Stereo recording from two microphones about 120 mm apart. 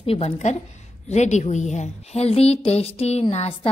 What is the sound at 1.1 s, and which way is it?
A woman's voice, 75° left (ahead or behind).